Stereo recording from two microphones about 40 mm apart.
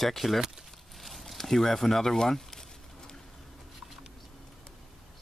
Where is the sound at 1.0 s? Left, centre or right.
Centre.